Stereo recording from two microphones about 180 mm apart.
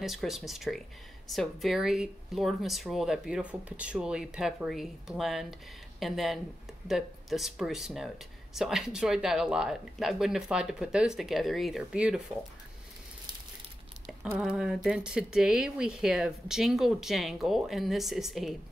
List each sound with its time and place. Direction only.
0.0 s speech: centre (ahead or behind)
14.2 s speech: 5° right (ahead or behind)